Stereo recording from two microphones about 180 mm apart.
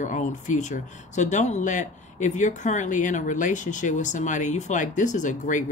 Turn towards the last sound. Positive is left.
turn(degrees=45)  # may be behind; listen again after turning